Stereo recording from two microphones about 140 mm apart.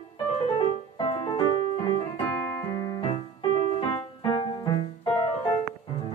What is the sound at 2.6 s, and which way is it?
Keyboard, 20° left (ahead or behind).